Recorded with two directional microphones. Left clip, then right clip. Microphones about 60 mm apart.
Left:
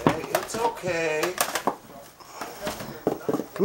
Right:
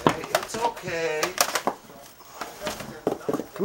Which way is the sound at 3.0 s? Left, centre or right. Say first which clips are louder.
Even; centre.